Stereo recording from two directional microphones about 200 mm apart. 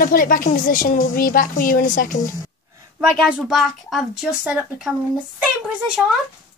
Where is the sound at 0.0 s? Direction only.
45° left (ahead or behind).